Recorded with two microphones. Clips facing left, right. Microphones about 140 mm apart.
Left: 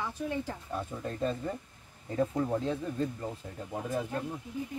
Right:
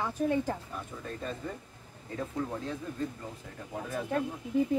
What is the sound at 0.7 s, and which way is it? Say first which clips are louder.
Speech: left 4 dB; 30° left (ahead or behind).